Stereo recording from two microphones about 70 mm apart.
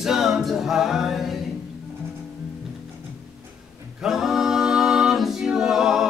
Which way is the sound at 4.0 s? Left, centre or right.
Centre.